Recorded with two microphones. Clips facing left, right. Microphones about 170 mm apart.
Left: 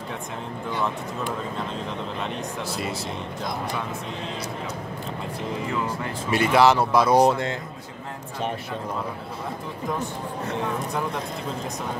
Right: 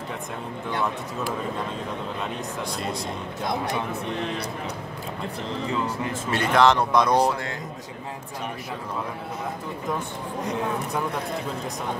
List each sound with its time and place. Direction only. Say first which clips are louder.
6.3 s speech: left 1 dB; 5° left (ahead or behind)
7.2 s speech: left 4 dB; 20° left (ahead or behind)